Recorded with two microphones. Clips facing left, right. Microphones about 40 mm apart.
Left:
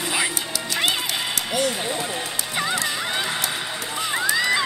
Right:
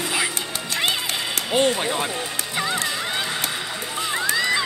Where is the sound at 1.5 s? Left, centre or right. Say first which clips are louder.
Right 5 dB; right.